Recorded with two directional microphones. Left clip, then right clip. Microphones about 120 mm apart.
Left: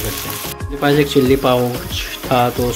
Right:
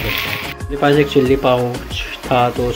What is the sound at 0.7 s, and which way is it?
Speech, 5° left (ahead or behind).